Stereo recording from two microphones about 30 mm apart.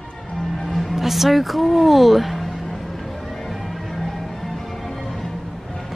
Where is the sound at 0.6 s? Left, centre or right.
Centre.